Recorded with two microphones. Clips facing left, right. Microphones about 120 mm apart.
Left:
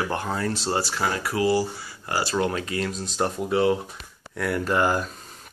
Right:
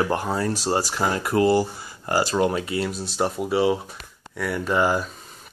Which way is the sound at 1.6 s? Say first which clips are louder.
Right 2 dB; 20° right (ahead or behind).